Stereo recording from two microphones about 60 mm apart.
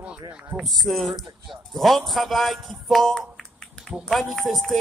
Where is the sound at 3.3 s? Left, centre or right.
Centre.